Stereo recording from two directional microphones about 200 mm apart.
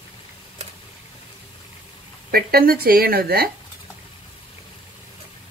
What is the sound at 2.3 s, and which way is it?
A woman's voice, 50° right (ahead or behind).